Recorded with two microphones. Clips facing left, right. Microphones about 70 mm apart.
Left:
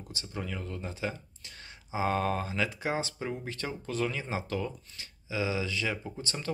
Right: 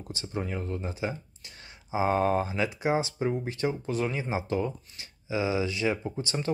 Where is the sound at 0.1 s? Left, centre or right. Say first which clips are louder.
Right 5 dB; right.